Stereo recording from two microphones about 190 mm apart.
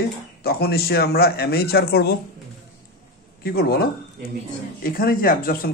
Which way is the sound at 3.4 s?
50° left (ahead or behind).